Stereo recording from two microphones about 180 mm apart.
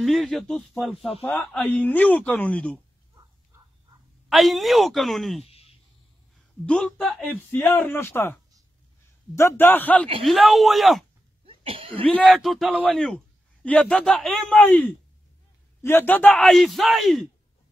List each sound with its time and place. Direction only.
0.0 s a man's voice: centre (ahead or behind)
4.3 s a man's voice: centre (ahead or behind)
5.5 s a sound: 35° left (ahead or behind)
6.6 s a man's voice: 5° left (ahead or behind)
11.4 s cough: 30° right (ahead or behind)
12.1 s a man's voice: 5° left (ahead or behind)